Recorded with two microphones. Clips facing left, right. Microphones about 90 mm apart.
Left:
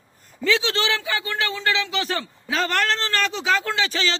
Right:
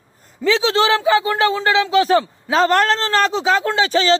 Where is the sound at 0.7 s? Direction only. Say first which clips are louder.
Right 10 dB; 35° right (ahead or behind).